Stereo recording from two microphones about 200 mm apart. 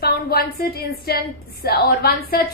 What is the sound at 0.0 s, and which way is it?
A woman's voice, 50° left (ahead or behind).